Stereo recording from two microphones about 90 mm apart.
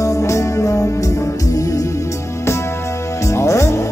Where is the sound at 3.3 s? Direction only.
30° left (ahead or behind).